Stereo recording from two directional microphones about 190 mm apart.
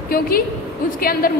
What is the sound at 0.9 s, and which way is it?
Speech, 50° left (ahead or behind).